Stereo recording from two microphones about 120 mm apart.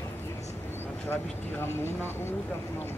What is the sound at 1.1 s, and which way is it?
Vehicle, 20° left (ahead or behind).